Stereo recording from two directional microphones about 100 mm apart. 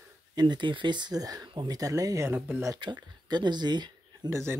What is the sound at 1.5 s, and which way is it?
Speech, 50° right (ahead or behind).